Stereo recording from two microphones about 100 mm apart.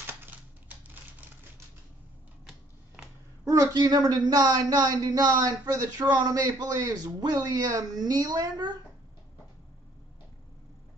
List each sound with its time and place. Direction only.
0.0 s typewriter: 20° right (ahead or behind)
3.4 s speech: 35° right (ahead or behind)